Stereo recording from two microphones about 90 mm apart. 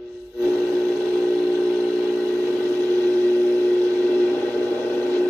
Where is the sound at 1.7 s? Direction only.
15° left (ahead or behind).